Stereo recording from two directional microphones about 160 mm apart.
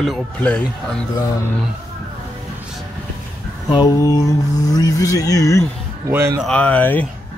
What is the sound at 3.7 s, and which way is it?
Speech, 25° left (ahead or behind).